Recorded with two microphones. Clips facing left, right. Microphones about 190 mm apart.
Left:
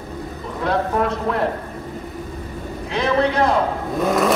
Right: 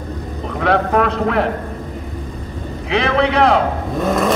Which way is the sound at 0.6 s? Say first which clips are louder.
Right 4 dB; 75° right (ahead or behind).